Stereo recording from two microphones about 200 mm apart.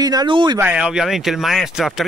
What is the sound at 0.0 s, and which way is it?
Speech, 20° right (ahead or behind).